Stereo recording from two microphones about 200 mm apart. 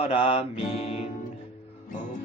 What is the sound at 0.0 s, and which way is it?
Music, 30° left (ahead or behind).